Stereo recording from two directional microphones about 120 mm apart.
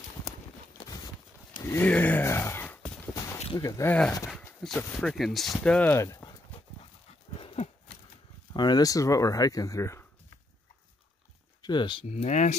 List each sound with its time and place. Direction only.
1.6 s speech: 20° left (ahead or behind)
1.9 s a sound: 15° left (ahead or behind)
3.5 s speech: 25° left (ahead or behind)
4.4 s dog: 10° left (ahead or behind)
4.7 s speech: 15° left (ahead or behind)
5.0 s speech: centre (ahead or behind)
5.6 s speech: 10° left (ahead or behind)
5.9 s speech: 25° left (ahead or behind)
7.3 s horse: 55° left (ahead or behind)
8.5 s speech: 35° left (ahead or behind)
11.6 s speech: 40° left (ahead or behind)
12.1 s speech: 75° left (ahead or behind)